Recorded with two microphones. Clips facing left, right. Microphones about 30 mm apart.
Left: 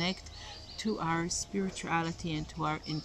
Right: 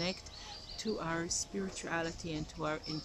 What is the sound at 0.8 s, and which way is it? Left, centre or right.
Speech, centre.